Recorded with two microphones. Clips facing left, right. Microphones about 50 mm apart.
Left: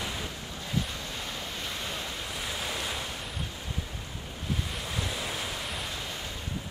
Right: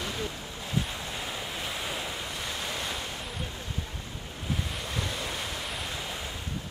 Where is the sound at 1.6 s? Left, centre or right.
Centre.